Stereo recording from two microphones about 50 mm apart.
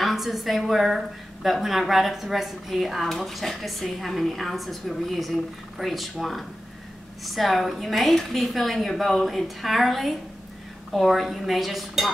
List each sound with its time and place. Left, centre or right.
0.0 s a woman's voice: centre